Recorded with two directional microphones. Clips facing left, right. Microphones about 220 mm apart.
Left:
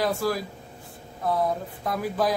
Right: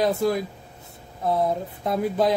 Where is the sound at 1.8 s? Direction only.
25° right (ahead or behind).